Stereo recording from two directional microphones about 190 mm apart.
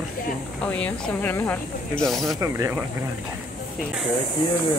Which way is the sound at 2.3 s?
15° right (ahead or behind).